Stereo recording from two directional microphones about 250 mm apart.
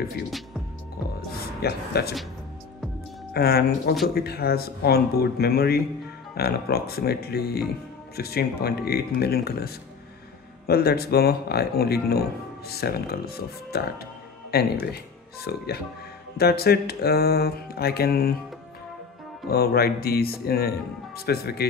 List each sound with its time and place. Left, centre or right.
1.3 s speech: left
3.3 s mantra: left
19.5 s mantra: left